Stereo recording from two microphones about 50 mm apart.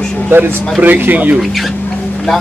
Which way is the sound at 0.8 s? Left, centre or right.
Right.